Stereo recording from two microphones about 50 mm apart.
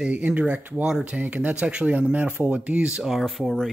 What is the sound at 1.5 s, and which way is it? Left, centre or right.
Speech, right.